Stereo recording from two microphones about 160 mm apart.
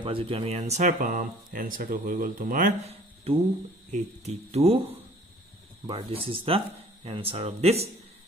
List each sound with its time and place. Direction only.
0.0 s speech: 35° right (ahead or behind)
0.8 s speech: 55° right (ahead or behind)
3.3 s speech: 40° right (ahead or behind)